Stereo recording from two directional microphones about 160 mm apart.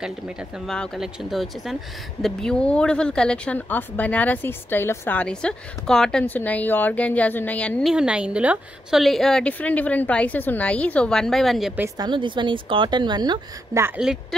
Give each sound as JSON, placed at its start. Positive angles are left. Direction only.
{"t": 0.0, "sound": "a woman's voice", "side_deg": 0}
{"t": 7.9, "sound": "a woman's voice", "side_deg": -5}
{"t": 12.0, "sound": "a woman's voice", "side_deg": -30}
{"t": 13.8, "sound": "a woman's voice", "side_deg": -5}